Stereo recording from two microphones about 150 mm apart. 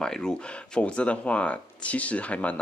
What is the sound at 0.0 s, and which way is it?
Speech, 5° left (ahead or behind).